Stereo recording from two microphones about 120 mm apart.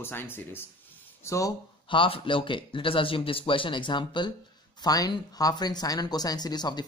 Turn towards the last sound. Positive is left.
turn(degrees=35)  # may be behind; listen again after turning